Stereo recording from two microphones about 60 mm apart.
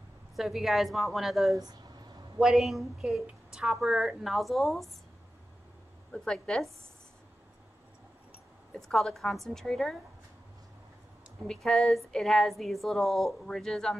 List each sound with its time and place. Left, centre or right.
0.4 s a woman's voice: centre
1.5 s a sound: right
2.3 s a woman's voice: centre
6.1 s a woman's voice: centre
8.7 s a woman's voice: centre
11.4 s a woman's voice: centre